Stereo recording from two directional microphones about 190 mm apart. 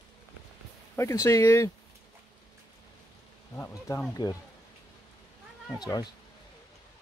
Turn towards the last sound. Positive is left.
turn(degrees=20)  # may be behind; listen again after turning